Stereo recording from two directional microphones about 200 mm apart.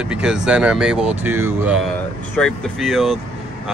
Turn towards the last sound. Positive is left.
turn(degrees=0)  # may be behind; listen again after turning